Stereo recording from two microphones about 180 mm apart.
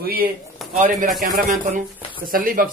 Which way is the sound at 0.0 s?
55° right (ahead or behind).